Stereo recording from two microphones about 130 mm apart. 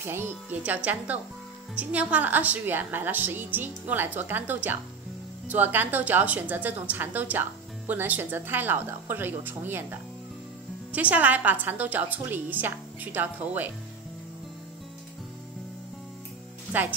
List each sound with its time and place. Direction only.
0.0 s a woman's voice: 15° right (ahead or behind)
16.7 s a woman's voice: 15° right (ahead or behind)